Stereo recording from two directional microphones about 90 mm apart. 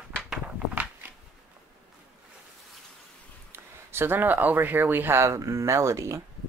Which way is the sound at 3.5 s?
25° right (ahead or behind).